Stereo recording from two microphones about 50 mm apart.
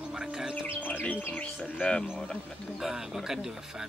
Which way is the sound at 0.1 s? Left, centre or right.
Centre.